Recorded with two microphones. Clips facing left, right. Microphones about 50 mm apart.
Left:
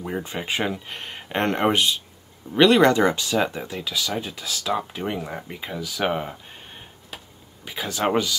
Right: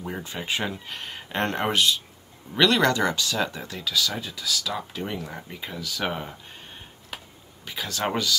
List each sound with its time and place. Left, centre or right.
0.3 s speech: left
2.5 s speech: left
4.3 s speech: left; by 6.3 s centre
7.6 s speech: centre